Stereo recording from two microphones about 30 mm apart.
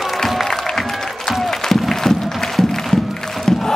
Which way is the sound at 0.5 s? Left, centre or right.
Centre.